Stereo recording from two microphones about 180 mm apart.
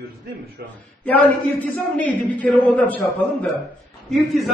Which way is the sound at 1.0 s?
10° left (ahead or behind).